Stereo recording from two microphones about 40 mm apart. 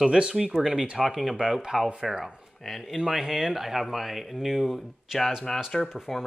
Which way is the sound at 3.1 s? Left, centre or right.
Centre.